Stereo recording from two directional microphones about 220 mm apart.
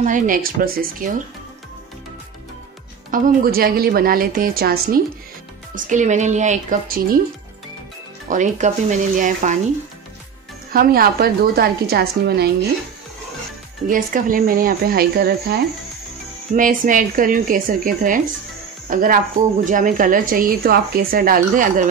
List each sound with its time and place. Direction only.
0.0 s speech: 35° right (ahead or behind)
3.1 s a woman's voice: 40° right (ahead or behind)
8.3 s speech: 35° right (ahead or behind)
10.7 s a woman's voice: 40° right (ahead or behind)
13.8 s speech: 40° right (ahead or behind)